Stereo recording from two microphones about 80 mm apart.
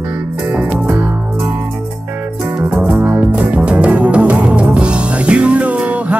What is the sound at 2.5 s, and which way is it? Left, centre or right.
Music, centre.